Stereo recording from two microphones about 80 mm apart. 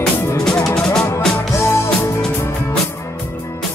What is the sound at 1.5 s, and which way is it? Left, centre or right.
Music, left.